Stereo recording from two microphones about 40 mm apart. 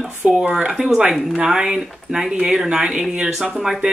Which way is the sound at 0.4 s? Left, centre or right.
Right.